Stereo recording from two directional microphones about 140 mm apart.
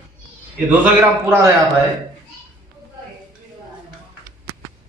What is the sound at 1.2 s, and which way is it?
Speech, 20° right (ahead or behind).